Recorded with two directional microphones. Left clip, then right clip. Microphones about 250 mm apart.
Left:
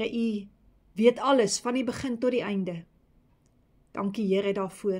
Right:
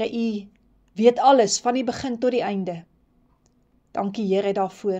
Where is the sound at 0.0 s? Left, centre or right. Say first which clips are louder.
Right 4 dB; left.